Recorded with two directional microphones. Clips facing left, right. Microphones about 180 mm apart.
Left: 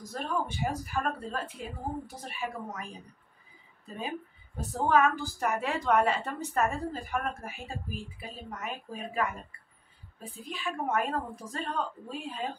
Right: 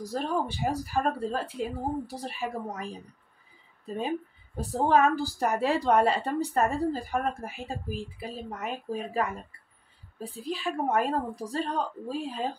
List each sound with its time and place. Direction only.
0.0 s a woman's voice: 35° right (ahead or behind)
4.6 s a woman's voice: 35° right (ahead or behind)